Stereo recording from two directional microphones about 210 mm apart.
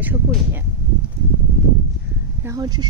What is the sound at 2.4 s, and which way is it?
Speech, 20° right (ahead or behind).